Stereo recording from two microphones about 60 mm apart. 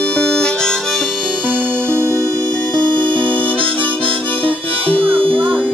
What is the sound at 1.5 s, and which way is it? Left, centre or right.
Music, right.